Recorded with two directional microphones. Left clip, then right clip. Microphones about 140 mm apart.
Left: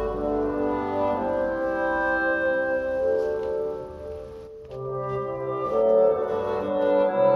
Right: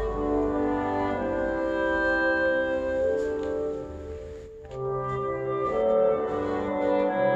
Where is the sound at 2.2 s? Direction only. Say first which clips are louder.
Even; 5° right (ahead or behind).